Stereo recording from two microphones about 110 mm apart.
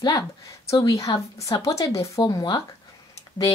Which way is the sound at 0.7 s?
30° left (ahead or behind).